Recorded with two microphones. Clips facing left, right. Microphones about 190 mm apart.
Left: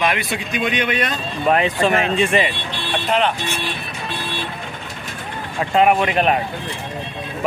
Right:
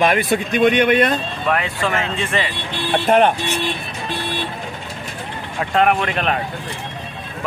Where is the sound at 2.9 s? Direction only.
50° right (ahead or behind).